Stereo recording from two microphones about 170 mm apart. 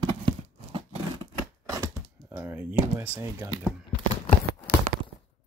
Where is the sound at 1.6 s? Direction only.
20° right (ahead or behind).